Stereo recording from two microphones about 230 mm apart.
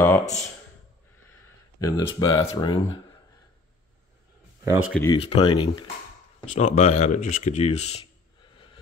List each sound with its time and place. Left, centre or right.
0.2 s speech: left
1.8 s speech: centre
4.6 s speech: centre
5.0 s speech: left